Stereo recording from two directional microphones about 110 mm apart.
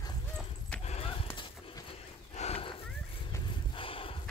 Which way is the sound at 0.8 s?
80° left.